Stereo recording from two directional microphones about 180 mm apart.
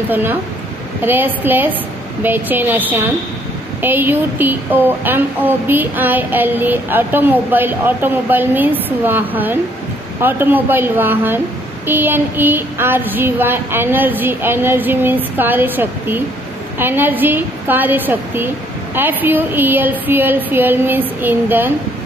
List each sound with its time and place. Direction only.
0.1 s speech: 10° right (ahead or behind)